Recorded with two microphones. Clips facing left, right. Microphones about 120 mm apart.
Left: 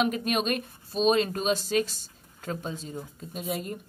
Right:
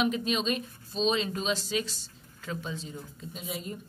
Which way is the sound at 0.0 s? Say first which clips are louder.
Left 2 dB; 50° left (ahead or behind).